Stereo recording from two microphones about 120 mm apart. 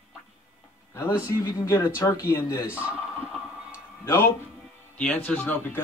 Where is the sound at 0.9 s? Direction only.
25° left (ahead or behind).